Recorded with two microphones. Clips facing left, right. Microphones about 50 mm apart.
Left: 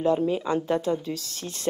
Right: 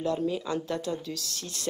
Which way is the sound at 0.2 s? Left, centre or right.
Left.